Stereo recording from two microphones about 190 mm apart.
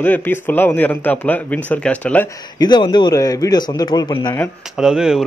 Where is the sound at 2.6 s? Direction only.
20° left (ahead or behind).